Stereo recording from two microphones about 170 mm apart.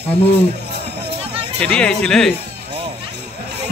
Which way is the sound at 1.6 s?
5° left (ahead or behind).